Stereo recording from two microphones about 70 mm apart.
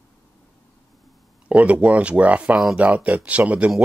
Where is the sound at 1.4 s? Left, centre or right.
Centre.